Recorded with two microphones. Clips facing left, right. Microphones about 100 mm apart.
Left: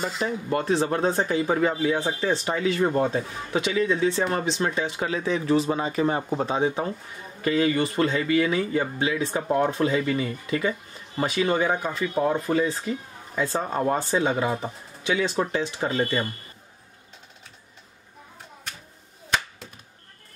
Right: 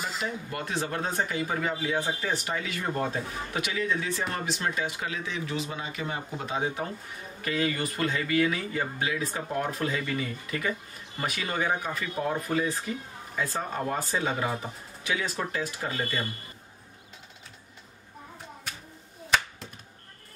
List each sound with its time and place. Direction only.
0.0 s speech: 30° left (ahead or behind)